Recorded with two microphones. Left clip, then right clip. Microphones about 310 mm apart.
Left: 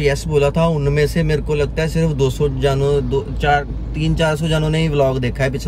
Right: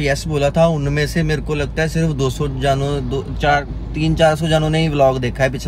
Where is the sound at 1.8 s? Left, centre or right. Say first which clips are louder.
Left 1 dB; right.